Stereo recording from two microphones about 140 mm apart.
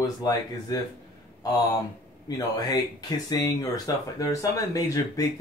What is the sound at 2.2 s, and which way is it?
Speech, 30° left (ahead or behind).